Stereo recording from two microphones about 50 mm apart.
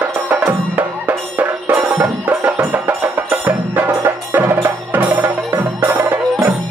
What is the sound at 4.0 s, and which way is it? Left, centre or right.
Wood block, right.